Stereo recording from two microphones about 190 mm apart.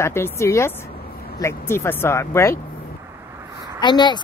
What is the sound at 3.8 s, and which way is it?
Speech, 25° left (ahead or behind).